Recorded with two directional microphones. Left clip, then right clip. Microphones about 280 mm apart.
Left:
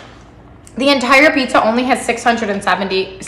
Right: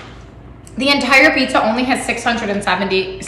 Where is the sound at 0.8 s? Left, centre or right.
Left.